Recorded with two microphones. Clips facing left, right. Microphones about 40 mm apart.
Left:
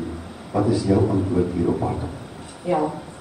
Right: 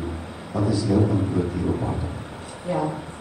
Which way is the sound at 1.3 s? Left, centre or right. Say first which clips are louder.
Left 3 dB; left.